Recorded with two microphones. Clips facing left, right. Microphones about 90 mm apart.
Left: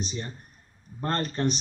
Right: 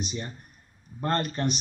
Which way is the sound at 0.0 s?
35° left (ahead or behind).